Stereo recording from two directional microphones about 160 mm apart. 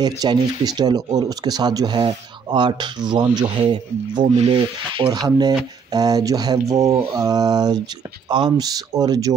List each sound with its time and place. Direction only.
0.0 s speech: 25° right (ahead or behind)